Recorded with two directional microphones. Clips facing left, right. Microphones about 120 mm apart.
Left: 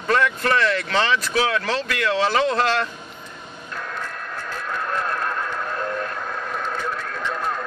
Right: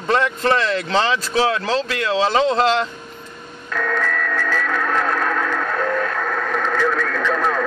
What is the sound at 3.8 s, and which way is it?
Music, 90° right.